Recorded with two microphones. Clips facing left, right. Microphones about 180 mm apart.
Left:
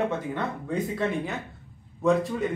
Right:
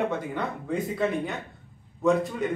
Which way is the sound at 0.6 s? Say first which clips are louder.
Right 1 dB; centre (ahead or behind).